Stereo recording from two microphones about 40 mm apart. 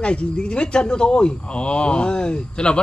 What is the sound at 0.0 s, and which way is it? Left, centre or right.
Speech, left.